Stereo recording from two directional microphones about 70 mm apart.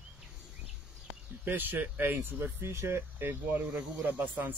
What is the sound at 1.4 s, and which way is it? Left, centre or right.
Speech, right.